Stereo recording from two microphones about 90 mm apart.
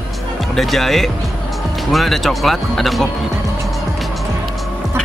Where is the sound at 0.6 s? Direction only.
Centre (ahead or behind).